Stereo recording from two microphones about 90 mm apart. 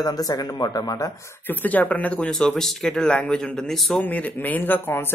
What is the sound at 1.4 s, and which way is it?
Speech, 20° left (ahead or behind).